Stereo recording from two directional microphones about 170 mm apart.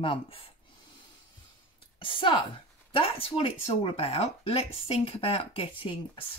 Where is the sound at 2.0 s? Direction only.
30° left (ahead or behind).